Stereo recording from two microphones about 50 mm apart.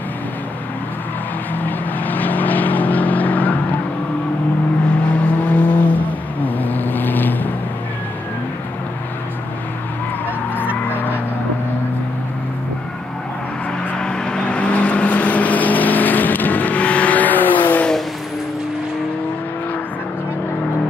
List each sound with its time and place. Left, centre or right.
1.6 s vehicle: left
5.1 s vehicle: left
10.5 s vehicle: left
13.9 s vehicle: centre; by 17.8 s left